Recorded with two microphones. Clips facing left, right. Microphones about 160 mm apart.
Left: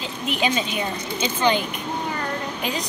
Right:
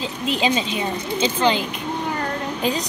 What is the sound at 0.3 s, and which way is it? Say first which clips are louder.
A woman's voice: right 2 dB; 30° right (ahead or behind).